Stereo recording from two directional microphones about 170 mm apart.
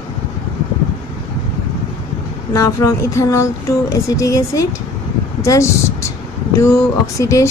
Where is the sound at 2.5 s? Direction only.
20° left (ahead or behind).